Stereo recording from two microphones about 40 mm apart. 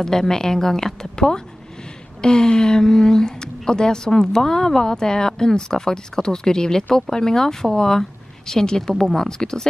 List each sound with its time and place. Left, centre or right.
0.0 s speech: centre